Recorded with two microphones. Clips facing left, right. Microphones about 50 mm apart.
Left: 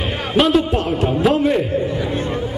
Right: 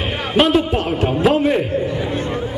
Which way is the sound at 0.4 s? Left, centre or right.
Centre.